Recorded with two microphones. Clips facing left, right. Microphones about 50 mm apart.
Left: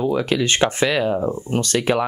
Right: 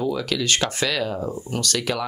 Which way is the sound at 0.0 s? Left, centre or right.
Left.